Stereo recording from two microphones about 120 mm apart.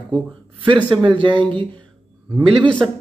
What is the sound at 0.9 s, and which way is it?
Speech, 40° right (ahead or behind).